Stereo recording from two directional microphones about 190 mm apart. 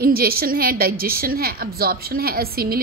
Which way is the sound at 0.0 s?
50° right (ahead or behind).